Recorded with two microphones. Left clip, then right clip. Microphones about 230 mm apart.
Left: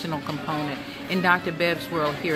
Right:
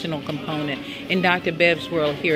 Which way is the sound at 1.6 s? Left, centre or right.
Centre.